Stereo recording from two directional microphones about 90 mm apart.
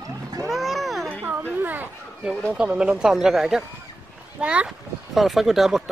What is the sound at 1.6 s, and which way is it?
Children playing, 20° right (ahead or behind).